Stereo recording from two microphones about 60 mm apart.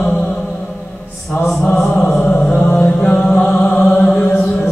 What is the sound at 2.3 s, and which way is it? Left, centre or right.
Chant, centre.